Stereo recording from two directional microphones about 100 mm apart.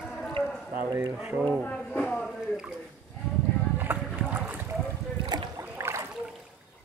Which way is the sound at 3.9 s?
20° right (ahead or behind).